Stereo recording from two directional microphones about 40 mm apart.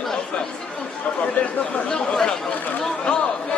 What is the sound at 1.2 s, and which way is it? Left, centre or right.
Speech, left.